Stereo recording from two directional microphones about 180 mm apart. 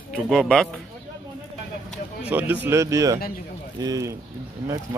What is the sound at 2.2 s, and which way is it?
Speech, 10° right (ahead or behind).